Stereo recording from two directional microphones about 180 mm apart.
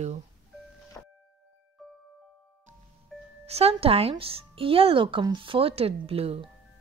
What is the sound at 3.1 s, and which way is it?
Music, centre (ahead or behind).